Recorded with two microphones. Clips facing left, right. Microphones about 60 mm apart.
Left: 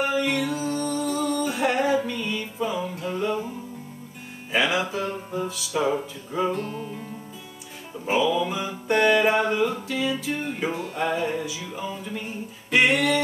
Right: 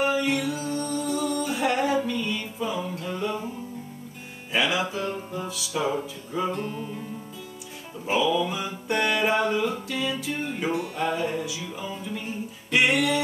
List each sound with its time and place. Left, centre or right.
0.0 s music: centre
1.6 s music: centre
5.0 s music: centre
6.5 s music: centre
8.2 s music: centre
11.0 s music: centre